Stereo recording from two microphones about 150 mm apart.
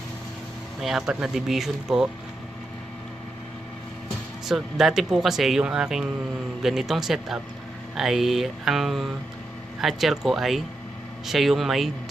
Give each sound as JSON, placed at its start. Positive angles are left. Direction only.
{"t": 0.7, "sound": "speech", "side_deg": 0}
{"t": 4.5, "sound": "speech", "side_deg": 0}